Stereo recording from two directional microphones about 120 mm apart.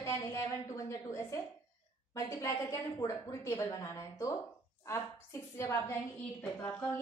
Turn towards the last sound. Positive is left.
turn(degrees=10)  # may be behind; listen again after turning